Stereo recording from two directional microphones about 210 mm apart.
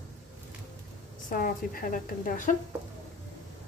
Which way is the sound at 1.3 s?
40° left (ahead or behind).